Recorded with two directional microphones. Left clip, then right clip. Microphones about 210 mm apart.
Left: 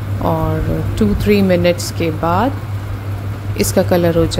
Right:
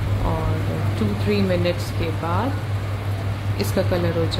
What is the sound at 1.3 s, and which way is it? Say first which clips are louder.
A woman's voice: left 9 dB; 40° left (ahead or behind).